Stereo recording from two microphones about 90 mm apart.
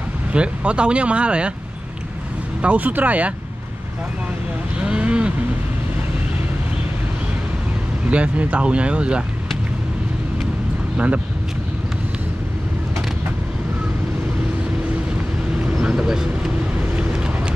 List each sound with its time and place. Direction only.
0.3 s speech: 10° right (ahead or behind)
2.6 s speech: 15° right (ahead or behind)
4.7 s cattle: 10° right (ahead or behind)
8.1 s speech: 15° right (ahead or behind)
15.6 s vehicle: 10° right (ahead or behind)